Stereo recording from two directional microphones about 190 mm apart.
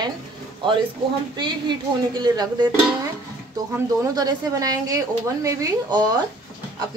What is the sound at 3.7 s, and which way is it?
Speech, 15° right (ahead or behind).